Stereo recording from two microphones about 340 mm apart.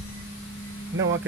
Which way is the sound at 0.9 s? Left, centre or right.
Right.